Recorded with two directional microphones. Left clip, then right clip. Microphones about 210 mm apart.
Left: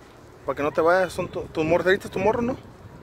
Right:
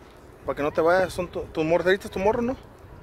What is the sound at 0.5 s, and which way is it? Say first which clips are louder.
Speech: left 1 dB; centre (ahead or behind).